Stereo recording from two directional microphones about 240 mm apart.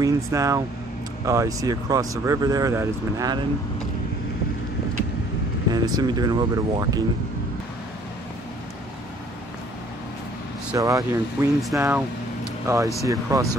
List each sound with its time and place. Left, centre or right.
0.0 s speech: centre
5.7 s speech: centre
10.7 s speech: centre